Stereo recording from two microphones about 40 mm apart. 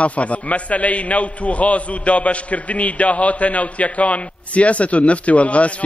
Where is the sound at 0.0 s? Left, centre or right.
Left.